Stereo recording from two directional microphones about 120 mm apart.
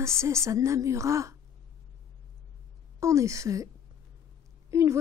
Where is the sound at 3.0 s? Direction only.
25° right (ahead or behind).